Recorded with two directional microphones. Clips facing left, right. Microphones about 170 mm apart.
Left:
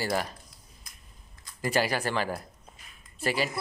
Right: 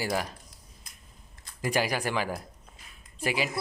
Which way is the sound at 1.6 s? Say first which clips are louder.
Left 1 dB; 10° right (ahead or behind).